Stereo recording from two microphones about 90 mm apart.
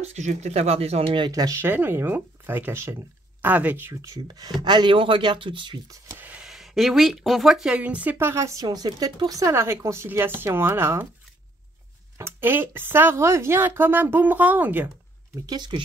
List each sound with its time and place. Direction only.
0.7 s speech: 75° right (ahead or behind)
1.3 s speech: 40° right (ahead or behind)
1.6 s speech: 25° right (ahead or behind)
3.9 s speech: 35° right (ahead or behind)
4.6 s speech: 55° right (ahead or behind)
5.9 s a sound: 25° right (ahead or behind)
6.4 s speech: 5° right (ahead or behind); by 8.6 s 35° right (ahead or behind)
8.6 s speech: 45° right (ahead or behind); by 11.1 s 25° right (ahead or behind)
12.2 s speech: 25° right (ahead or behind)
15.4 s speech: 55° right (ahead or behind)